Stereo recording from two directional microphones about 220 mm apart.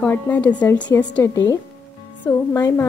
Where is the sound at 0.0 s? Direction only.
10° left (ahead or behind).